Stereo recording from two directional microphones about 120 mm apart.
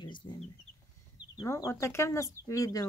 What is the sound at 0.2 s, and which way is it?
Speech, 40° left (ahead or behind).